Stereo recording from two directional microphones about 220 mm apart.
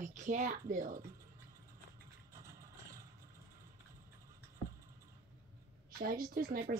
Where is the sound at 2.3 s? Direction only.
15° right (ahead or behind).